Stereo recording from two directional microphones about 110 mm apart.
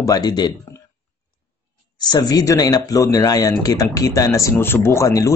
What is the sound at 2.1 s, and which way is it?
Speech, 35° left (ahead or behind).